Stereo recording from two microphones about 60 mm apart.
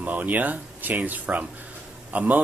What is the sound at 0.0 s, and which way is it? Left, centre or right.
Speech, right.